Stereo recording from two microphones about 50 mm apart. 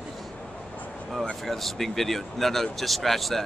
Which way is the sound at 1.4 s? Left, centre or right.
Centre.